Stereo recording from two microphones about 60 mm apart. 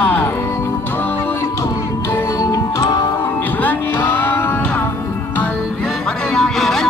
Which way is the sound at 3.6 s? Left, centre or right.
Left.